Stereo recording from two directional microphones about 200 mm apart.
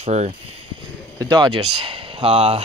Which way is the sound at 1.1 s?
20° right (ahead or behind).